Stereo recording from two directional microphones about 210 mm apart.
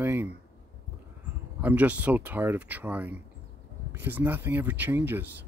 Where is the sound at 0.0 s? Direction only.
10° right (ahead or behind).